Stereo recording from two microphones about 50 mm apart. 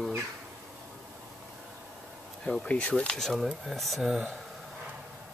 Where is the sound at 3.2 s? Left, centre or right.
Centre.